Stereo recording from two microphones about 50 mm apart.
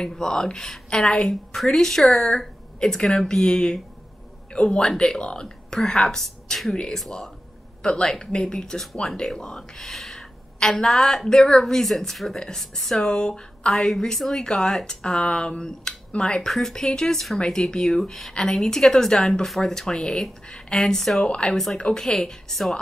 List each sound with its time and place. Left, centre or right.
0.0 s speech: centre
1.5 s speech: centre
7.8 s speech: centre
16.4 s speech: centre
21.2 s speech: left
21.5 s a woman's voice: centre